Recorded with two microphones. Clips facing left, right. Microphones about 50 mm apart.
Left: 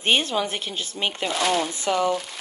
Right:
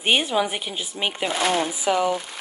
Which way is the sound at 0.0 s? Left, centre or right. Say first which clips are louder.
Right 1 dB; centre.